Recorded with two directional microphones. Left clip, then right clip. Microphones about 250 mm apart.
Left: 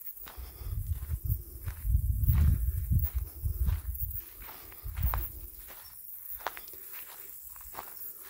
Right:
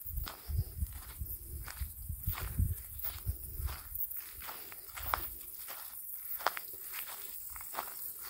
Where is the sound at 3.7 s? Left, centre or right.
Right.